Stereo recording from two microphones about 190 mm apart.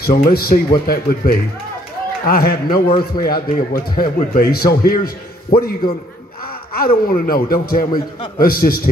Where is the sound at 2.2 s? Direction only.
50° left (ahead or behind).